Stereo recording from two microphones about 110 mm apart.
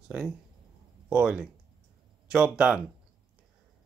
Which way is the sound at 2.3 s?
10° right (ahead or behind).